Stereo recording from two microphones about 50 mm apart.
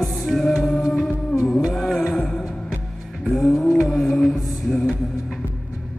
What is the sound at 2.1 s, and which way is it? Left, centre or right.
Music, centre.